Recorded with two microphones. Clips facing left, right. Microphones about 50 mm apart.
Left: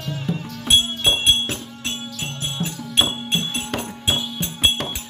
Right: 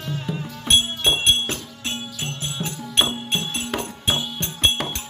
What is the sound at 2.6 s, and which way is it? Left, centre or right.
Music, right.